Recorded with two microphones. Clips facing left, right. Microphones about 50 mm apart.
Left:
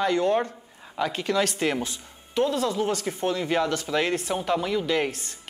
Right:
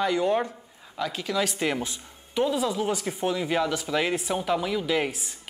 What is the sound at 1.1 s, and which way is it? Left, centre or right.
Speech, centre.